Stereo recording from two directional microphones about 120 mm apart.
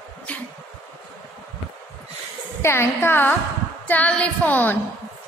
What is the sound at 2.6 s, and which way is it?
A woman's voice, 20° left (ahead or behind).